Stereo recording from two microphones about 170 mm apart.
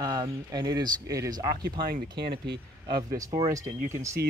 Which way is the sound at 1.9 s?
65° right (ahead or behind).